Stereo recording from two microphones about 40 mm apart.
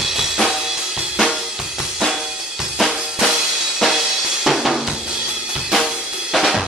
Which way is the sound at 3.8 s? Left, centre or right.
Centre.